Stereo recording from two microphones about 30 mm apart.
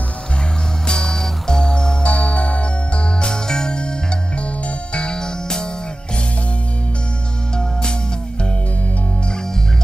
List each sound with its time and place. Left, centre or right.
0.8 s music: centre
2.0 s music: left
3.4 s music: left